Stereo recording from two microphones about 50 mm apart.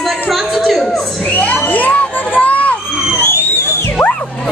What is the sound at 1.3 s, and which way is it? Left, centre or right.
Crowd, left.